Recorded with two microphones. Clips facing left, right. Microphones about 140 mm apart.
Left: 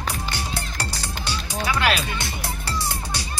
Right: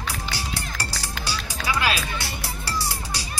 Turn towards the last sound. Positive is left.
turn(degrees=20)  # may be behind; listen again after turning